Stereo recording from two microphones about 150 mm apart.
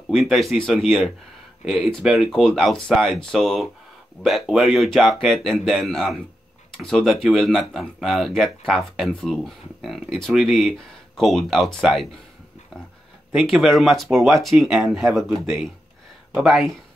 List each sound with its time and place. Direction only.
0.1 s speech: centre (ahead or behind)
13.3 s speech: 5° right (ahead or behind)